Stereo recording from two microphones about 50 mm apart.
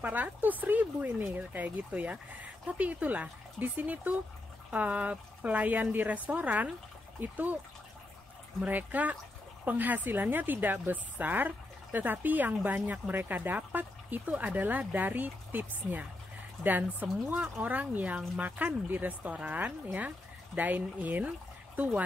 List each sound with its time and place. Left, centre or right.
0.0 s a woman's voice: right
8.6 s a woman's voice: right
13.1 s a woman's voice: right